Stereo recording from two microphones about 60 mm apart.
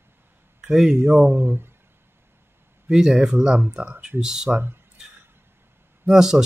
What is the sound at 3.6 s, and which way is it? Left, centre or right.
Speech, right.